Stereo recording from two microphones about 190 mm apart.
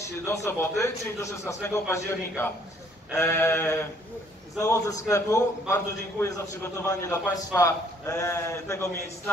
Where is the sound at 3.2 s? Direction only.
15° left (ahead or behind).